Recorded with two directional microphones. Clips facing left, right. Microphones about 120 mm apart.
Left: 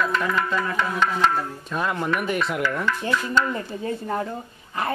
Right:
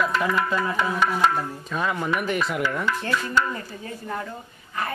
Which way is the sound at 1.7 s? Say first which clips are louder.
Left 1 dB; centre (ahead or behind).